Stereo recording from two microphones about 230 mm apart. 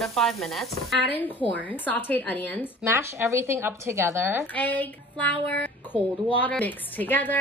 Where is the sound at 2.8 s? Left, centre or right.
Centre.